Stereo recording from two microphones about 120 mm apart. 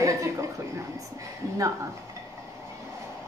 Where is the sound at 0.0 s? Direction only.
25° right (ahead or behind).